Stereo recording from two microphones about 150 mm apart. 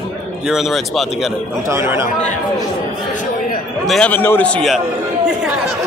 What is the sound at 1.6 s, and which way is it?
Speech, 20° right (ahead or behind).